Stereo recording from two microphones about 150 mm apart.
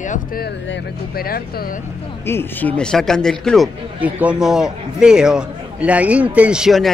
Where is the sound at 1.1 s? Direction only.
85° left.